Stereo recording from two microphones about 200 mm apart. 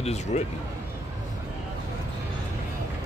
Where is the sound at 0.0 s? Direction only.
35° left (ahead or behind).